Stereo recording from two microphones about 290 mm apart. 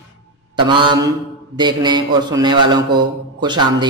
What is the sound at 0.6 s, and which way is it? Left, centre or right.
A man's voice, centre.